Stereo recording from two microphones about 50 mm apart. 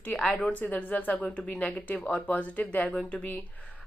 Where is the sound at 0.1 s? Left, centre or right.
Left.